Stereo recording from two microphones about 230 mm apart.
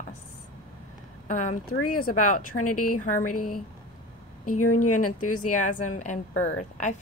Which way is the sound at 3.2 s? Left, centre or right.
Left.